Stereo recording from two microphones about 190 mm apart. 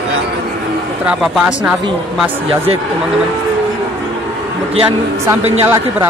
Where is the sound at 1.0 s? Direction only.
5° right (ahead or behind).